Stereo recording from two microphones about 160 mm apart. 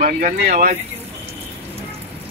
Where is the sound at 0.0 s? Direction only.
60° right (ahead or behind).